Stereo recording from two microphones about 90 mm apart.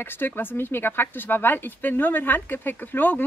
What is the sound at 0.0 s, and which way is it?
Speech, 20° left (ahead or behind).